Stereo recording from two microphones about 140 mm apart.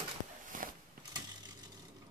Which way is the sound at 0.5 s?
75° right (ahead or behind).